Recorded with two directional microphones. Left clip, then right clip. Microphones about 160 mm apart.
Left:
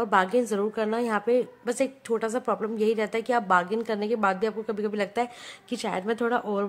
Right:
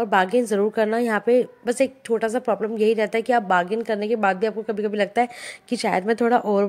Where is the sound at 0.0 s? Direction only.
15° right (ahead or behind).